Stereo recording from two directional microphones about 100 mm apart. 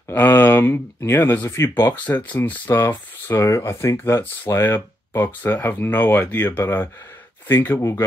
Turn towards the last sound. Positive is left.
turn(degrees=30)  # may be behind; listen again after turning